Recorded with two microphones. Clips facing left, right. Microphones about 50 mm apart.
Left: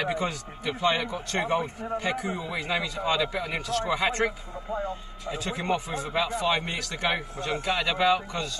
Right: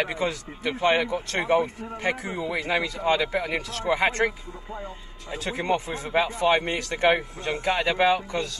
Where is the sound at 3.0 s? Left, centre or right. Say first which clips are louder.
Right 3 dB; right.